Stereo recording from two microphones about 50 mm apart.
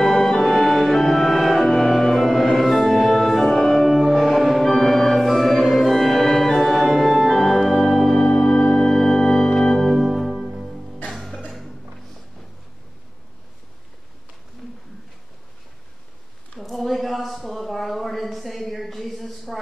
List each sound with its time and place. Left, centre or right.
0.0 s music: centre
5.3 s organ: centre
8.4 s music: centre
16.5 s a sound: centre